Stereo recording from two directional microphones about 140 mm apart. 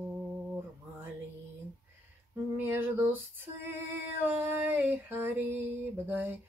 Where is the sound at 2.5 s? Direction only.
15° right (ahead or behind).